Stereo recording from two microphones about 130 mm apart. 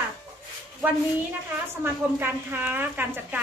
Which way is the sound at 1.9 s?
15° right (ahead or behind).